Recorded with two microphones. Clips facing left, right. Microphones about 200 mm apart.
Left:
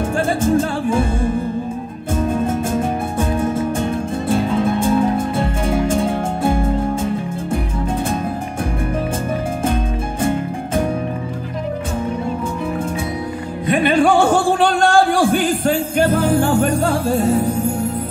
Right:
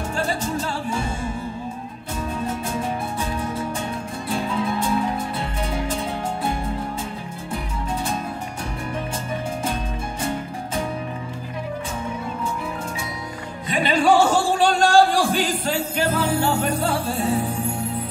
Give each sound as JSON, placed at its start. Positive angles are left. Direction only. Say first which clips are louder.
{"t": 0.2, "sound": "music", "louder": "left 9 dB", "side_deg": 50}
{"t": 10.2, "sound": "music", "louder": "left 8 dB", "side_deg": 50}
{"t": 13.7, "sound": "music", "louder": "left 4 dB", "side_deg": 55}